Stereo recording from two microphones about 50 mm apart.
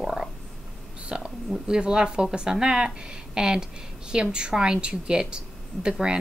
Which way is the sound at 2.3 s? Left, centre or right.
Centre.